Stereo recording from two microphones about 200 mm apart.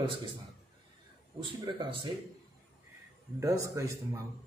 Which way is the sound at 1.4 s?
25° right (ahead or behind).